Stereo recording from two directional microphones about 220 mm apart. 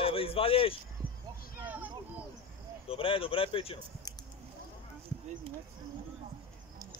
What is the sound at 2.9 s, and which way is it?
Speech, 25° left (ahead or behind).